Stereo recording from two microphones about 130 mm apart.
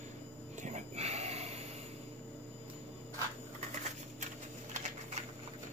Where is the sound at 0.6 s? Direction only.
65° right (ahead or behind).